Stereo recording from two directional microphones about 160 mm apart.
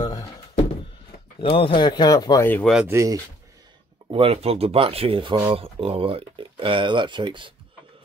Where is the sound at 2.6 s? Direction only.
5° right (ahead or behind).